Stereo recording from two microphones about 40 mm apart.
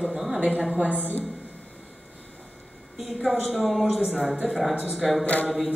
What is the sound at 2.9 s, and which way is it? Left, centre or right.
A woman's voice, centre.